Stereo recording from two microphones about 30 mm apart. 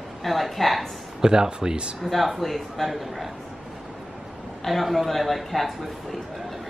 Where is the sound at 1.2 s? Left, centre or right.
Right.